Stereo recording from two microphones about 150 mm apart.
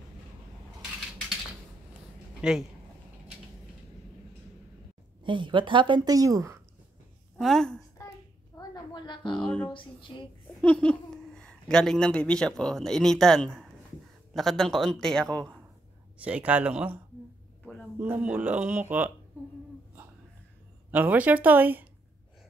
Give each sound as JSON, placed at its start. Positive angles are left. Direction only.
{"t": 5.2, "sound": "a woman's voice", "side_deg": -30}
{"t": 7.3, "sound": "speech", "side_deg": 0}
{"t": 8.5, "sound": "a woman's voice", "side_deg": 30}
{"t": 9.3, "sound": "speech", "side_deg": 10}
{"t": 9.7, "sound": "speech", "side_deg": 35}
{"t": 10.6, "sound": "speech", "side_deg": 10}
{"t": 16.2, "sound": "speech", "side_deg": -10}
{"t": 20.9, "sound": "speech", "side_deg": -10}